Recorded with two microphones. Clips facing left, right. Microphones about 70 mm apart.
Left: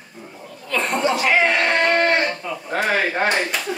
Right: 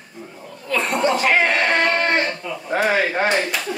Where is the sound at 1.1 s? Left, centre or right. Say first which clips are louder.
Left 1 dB; right.